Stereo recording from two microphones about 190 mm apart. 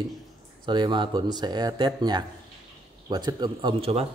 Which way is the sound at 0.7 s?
25° right (ahead or behind).